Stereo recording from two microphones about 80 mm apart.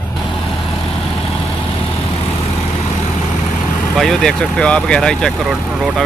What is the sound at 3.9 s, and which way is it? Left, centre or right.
Speech, centre.